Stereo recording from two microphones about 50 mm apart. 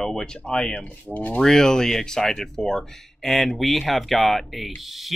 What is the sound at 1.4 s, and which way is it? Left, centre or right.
Speech, centre.